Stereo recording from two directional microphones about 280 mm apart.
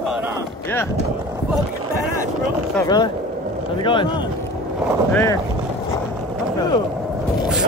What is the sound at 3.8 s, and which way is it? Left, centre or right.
Speech, centre.